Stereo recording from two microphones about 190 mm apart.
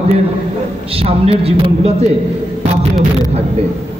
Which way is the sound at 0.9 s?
30° right (ahead or behind).